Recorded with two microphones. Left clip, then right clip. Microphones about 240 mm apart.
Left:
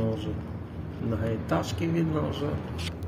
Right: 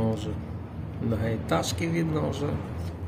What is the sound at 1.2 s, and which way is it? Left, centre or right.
Speech, centre.